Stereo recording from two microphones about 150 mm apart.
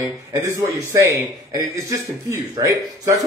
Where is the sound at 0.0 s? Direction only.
20° right (ahead or behind).